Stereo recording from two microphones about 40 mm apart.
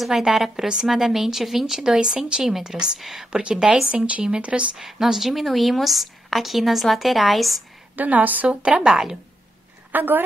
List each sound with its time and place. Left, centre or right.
0.1 s a woman's voice: centre
2.0 s speech: right
2.4 s a woman's voice: centre
3.3 s speech: right
4.7 s a woman's voice: centre
7.9 s a woman's voice: right
8.5 s speech: right
9.9 s a woman's voice: right